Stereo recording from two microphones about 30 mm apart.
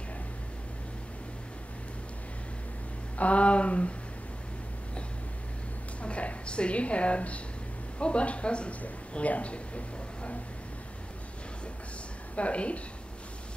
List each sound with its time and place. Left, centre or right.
3.2 s a man's voice: left
6.0 s a woman's voice: left
9.1 s a man's voice: left
12.4 s a man's voice: left